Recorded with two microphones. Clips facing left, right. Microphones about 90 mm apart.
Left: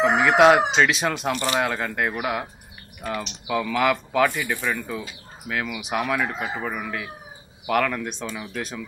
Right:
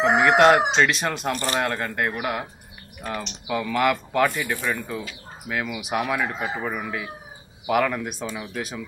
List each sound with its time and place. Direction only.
0.2 s speech: centre (ahead or behind)